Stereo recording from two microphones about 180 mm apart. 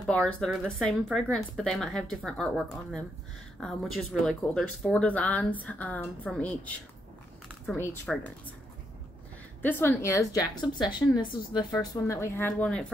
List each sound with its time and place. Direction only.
0.0 s speech: 5° left (ahead or behind)
7.7 s speech: 10° left (ahead or behind)
9.6 s speech: 10° left (ahead or behind)